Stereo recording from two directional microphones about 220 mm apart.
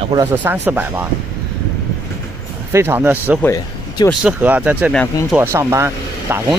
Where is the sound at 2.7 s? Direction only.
10° right (ahead or behind).